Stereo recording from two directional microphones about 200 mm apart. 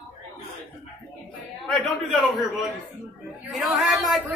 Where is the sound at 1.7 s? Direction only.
Centre (ahead or behind).